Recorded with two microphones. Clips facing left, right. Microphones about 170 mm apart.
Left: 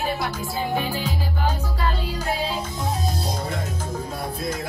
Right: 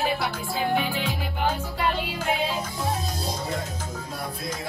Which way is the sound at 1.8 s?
15° right (ahead or behind).